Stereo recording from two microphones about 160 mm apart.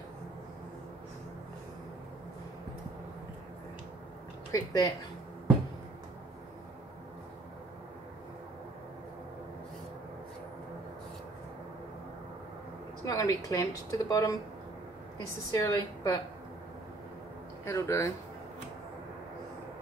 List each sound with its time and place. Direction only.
4.5 s speech: 20° left (ahead or behind)
13.0 s a woman's voice: 20° left (ahead or behind)
15.5 s a woman's voice: 20° left (ahead or behind)
17.6 s speech: 15° left (ahead or behind)